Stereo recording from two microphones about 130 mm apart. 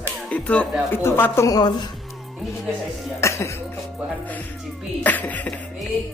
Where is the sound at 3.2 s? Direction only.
20° left (ahead or behind).